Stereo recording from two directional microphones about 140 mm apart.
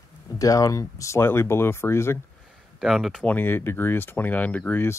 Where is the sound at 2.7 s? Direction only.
Centre (ahead or behind).